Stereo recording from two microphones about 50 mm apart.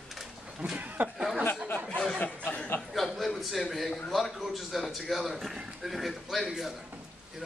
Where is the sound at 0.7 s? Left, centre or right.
Right.